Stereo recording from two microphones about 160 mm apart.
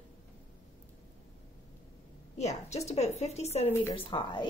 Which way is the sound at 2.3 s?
45° left (ahead or behind).